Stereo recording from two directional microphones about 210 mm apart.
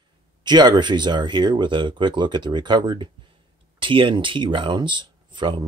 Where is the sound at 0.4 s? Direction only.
20° right (ahead or behind).